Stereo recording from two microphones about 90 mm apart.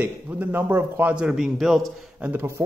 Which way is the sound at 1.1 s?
10° right (ahead or behind).